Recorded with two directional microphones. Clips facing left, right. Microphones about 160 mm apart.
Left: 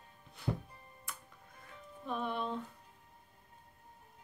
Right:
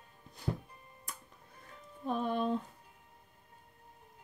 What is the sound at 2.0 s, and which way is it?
Music, 40° right (ahead or behind).